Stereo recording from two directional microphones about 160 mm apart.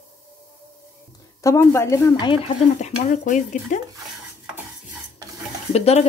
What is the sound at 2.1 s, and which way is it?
Speech, 30° left (ahead or behind).